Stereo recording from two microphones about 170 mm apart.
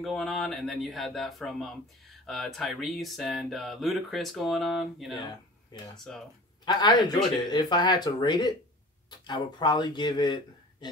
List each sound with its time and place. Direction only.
0.0 s speech: centre (ahead or behind)
5.3 s speech: 25° left (ahead or behind)